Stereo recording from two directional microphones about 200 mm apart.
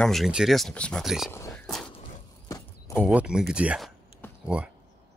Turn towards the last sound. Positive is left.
turn(degrees=-5)  # may be behind; listen again after turning